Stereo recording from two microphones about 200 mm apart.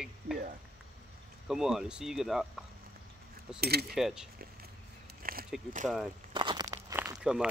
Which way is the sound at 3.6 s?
50° right (ahead or behind).